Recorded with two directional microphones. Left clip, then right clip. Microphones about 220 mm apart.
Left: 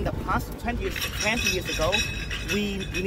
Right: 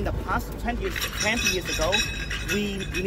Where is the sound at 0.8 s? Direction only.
25° right (ahead or behind).